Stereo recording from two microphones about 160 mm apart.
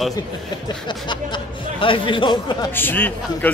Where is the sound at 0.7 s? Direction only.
30° left (ahead or behind).